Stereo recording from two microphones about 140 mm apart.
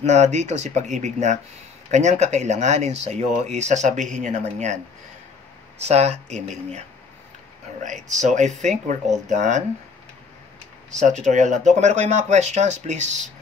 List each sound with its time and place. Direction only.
0.0 s speech: 55° right (ahead or behind)
5.9 s speech: 50° right (ahead or behind)
7.8 s speech: 60° right (ahead or behind)
11.0 s speech: 55° right (ahead or behind)